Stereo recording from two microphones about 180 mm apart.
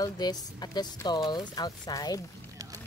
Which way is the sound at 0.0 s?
20° left (ahead or behind).